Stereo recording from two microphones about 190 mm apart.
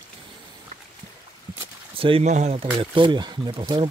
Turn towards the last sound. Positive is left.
turn(degrees=-25)  # may be behind; listen again after turning